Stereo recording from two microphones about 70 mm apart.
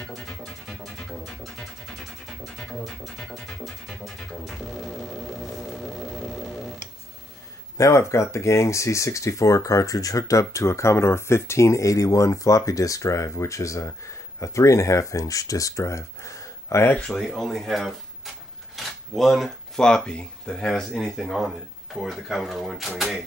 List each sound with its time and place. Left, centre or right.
0.1 s music: centre
2.8 s speech: centre
3.2 s music: centre
5.9 s vehicle: centre
7.7 s speech: left
17.0 s speech: centre